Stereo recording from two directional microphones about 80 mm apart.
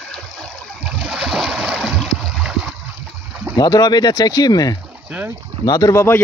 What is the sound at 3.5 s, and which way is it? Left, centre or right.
Speech, left.